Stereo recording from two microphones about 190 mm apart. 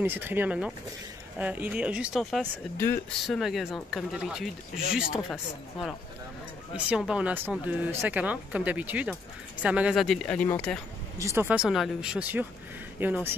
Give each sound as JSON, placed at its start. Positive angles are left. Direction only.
{"t": 0.0, "sound": "speech", "side_deg": -10}
{"t": 11.1, "sound": "speech", "side_deg": -15}